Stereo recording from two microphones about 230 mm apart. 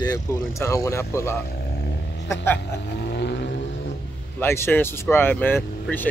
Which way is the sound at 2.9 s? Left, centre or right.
Left.